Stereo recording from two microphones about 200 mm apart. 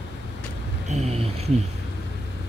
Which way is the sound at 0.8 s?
35° right (ahead or behind).